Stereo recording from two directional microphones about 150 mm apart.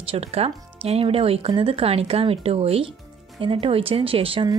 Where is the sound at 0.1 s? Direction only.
40° right (ahead or behind).